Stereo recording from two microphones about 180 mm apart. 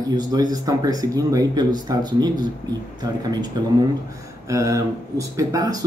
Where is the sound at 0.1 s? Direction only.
20° right (ahead or behind).